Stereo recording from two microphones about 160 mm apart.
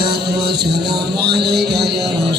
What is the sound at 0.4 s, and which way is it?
Music, 90° right.